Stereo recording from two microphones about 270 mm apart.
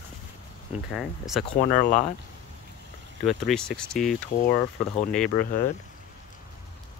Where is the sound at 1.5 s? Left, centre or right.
Left.